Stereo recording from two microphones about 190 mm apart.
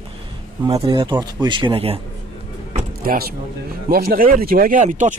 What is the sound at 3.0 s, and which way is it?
Speech, 50° right (ahead or behind).